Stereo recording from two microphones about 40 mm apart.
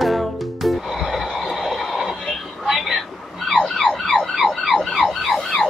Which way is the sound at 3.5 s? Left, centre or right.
Centre.